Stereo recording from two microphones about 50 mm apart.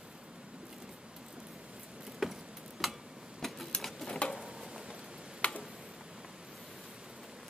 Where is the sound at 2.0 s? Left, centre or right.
Centre.